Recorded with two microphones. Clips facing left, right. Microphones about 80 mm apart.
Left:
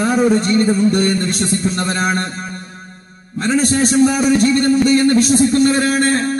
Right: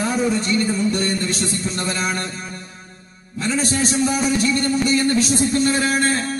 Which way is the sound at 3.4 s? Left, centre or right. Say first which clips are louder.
Left 6 dB; left.